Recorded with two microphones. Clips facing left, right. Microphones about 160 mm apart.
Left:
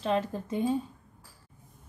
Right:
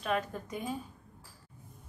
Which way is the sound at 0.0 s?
30° left (ahead or behind).